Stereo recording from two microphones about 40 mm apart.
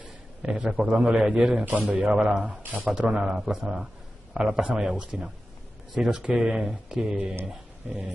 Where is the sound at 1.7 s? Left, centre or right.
Right.